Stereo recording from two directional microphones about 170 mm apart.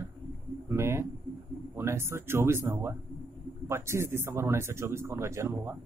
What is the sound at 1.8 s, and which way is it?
A man's voice, 15° right (ahead or behind).